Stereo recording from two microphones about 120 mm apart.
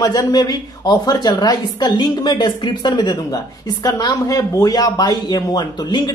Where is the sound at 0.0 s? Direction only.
30° left (ahead or behind).